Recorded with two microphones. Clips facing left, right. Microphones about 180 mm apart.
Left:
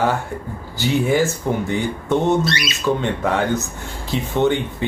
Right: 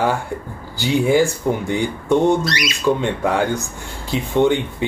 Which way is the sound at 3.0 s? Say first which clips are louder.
Right 1 dB; 10° right (ahead or behind).